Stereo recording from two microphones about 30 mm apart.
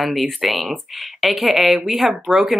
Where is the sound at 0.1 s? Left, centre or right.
Centre.